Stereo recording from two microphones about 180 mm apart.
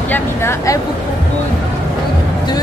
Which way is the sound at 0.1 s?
15° left (ahead or behind).